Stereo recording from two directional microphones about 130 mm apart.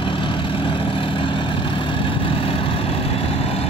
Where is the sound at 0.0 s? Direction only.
40° left (ahead or behind).